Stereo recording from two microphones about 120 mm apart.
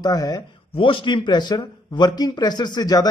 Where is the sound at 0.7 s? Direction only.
45° left (ahead or behind).